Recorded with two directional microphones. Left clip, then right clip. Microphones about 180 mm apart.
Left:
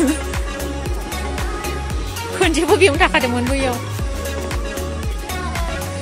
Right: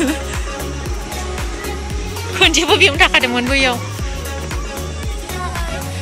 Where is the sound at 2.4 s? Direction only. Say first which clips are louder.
Right 3 dB; 20° left (ahead or behind); by 3.7 s 5° left (ahead or behind).